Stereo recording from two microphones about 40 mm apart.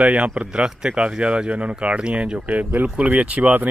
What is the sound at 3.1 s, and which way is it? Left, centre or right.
Speech, right.